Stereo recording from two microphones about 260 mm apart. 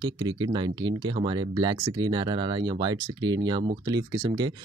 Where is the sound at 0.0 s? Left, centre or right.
Centre.